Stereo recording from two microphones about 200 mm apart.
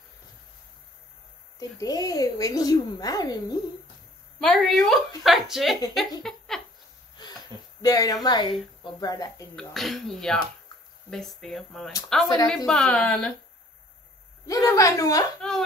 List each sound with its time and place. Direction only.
1.6 s speech: 20° left (ahead or behind)
4.4 s speech: centre (ahead or behind)
6.2 s a sound: centre (ahead or behind)
7.2 s wheeze: 20° left (ahead or behind)
7.8 s speech: 20° left (ahead or behind)
9.6 s speech: centre (ahead or behind)
14.4 s a woman's voice: 15° left (ahead or behind)